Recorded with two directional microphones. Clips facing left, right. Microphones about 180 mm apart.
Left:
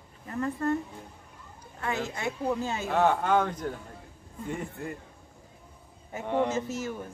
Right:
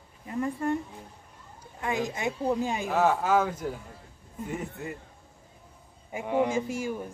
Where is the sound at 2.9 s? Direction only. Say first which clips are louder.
Left 1 dB; 5° right (ahead or behind).